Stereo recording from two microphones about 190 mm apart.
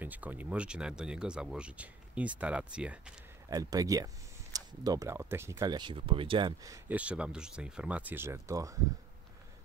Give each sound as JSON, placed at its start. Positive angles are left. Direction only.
{"t": 0.0, "sound": "speech", "side_deg": -10}
{"t": 3.4, "sound": "speech", "side_deg": -20}